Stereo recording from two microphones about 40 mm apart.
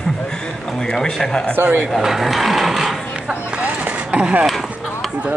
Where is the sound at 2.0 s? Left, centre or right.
Centre.